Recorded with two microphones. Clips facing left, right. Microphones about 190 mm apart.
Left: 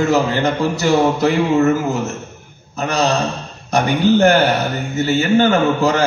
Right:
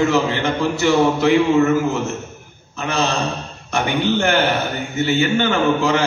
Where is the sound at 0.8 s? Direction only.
40° left (ahead or behind).